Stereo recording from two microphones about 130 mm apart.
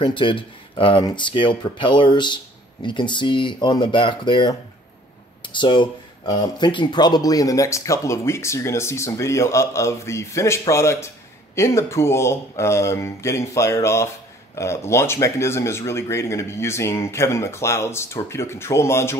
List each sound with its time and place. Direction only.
0.0 s speech: 40° left (ahead or behind); by 19.1 s 20° left (ahead or behind)